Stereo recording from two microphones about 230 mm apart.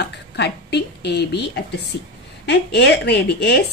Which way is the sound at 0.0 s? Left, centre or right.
Left.